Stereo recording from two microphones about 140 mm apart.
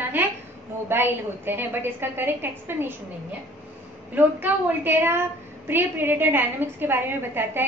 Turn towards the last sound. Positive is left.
turn(degrees=-15)  # may be behind; listen again after turning